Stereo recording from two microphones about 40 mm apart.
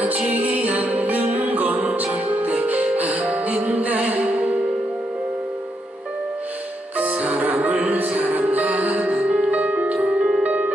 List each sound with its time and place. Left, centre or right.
0.3 s music: right
1.9 s music: right
2.2 s music: right
7.0 s music: right